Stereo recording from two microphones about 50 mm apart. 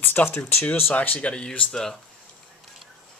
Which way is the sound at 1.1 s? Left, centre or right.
Centre.